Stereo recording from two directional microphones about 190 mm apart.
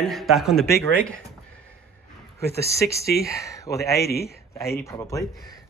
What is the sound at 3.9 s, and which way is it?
Speech, 55° left (ahead or behind).